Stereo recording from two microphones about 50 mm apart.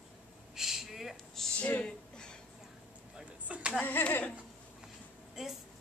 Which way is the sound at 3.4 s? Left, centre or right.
Right.